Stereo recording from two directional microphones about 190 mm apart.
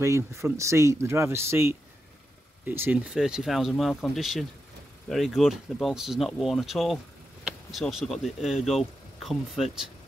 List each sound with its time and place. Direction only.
0.0 s speech: 15° right (ahead or behind)